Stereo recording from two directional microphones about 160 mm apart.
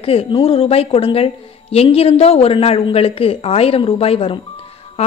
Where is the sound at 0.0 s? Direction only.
35° left (ahead or behind).